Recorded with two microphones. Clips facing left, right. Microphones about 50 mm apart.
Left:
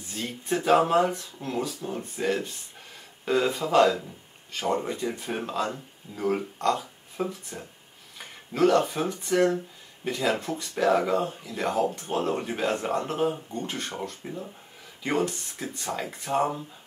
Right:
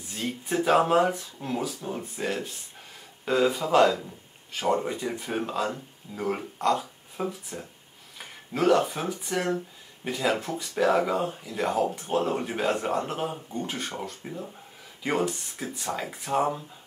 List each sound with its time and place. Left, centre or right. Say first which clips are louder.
0.1 s speech: even; centre
8.5 s speech: left 1 dB; centre